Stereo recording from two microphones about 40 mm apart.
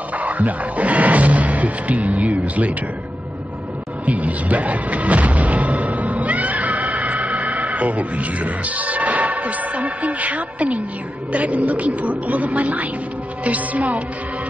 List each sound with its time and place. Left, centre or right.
0.2 s speech: right
4.0 s speech: right